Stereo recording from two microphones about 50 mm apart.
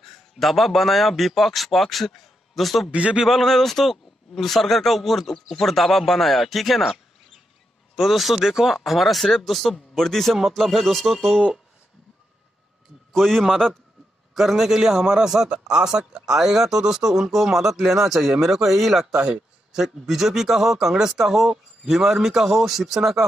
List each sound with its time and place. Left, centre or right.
0.0 s a man's voice: centre
2.9 s a man's voice: right
3.3 s speech: centre
13.1 s a man's voice: centre
14.3 s a man's voice: centre
19.0 s a man's voice: centre